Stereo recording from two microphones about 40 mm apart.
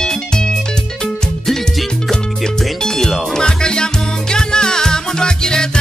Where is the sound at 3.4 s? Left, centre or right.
Centre.